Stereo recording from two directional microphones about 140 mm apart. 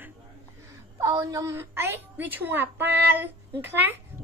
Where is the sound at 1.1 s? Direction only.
25° right (ahead or behind).